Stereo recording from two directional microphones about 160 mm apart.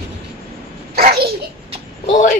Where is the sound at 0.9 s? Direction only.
75° right (ahead or behind).